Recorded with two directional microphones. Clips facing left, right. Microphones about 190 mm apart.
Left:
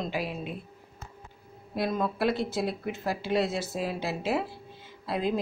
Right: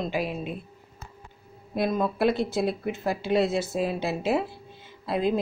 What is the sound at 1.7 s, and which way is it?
A woman's voice, 20° right (ahead or behind).